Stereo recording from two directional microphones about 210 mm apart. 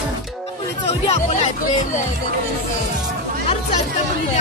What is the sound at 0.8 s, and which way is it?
Speech, 30° left (ahead or behind).